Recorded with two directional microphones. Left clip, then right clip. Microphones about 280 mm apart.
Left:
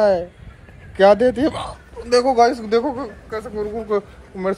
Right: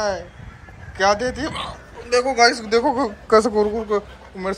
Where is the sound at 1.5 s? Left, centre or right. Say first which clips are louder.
Left 1 dB; left.